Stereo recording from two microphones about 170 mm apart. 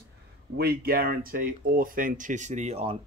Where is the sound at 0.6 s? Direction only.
60° right (ahead or behind).